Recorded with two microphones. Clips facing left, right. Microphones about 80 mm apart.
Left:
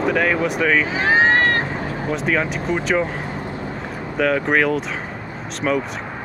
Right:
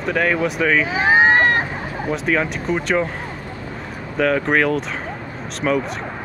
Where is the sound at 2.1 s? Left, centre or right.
Centre.